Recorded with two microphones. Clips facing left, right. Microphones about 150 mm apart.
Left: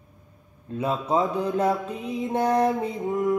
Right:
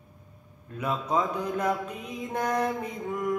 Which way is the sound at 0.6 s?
30° left (ahead or behind).